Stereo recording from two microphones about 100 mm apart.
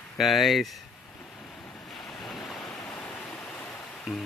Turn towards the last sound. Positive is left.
turn(degrees=-5)  # may be behind; listen again after turning